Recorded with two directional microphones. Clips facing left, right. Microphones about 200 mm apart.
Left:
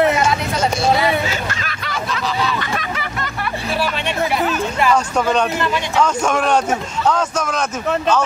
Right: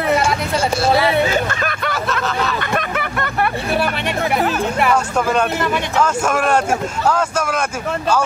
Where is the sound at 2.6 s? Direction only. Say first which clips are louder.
Right 3 dB; 55° right (ahead or behind).